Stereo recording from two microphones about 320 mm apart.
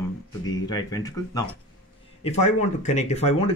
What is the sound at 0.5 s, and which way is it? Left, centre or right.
Speech, centre.